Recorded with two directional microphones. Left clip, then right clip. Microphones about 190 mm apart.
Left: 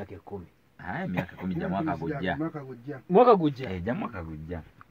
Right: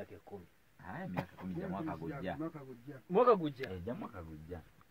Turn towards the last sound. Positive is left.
turn(degrees=35)  # may be behind; listen again after turning